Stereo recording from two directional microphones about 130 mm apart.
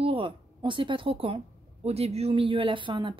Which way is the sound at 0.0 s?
40° right (ahead or behind).